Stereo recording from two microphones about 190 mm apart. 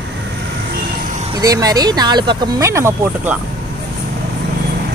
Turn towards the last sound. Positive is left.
turn(degrees=-10)  # may be behind; listen again after turning